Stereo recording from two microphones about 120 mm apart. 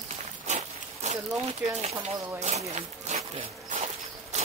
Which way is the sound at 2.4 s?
70° right (ahead or behind).